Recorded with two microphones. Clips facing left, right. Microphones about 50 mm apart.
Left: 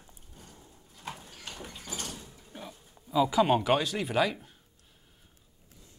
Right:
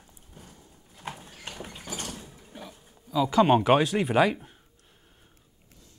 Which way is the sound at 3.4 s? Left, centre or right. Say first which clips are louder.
Right 5 dB; centre.